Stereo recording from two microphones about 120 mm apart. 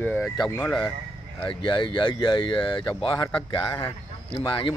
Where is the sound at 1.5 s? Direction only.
45° left (ahead or behind).